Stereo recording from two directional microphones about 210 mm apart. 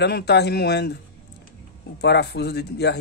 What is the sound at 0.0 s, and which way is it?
Speech, 50° left (ahead or behind).